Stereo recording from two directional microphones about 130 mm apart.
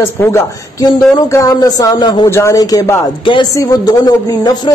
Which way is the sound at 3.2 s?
40° left (ahead or behind).